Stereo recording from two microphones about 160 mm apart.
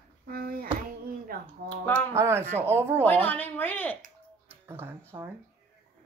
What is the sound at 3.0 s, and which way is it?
Speech, 10° left (ahead or behind).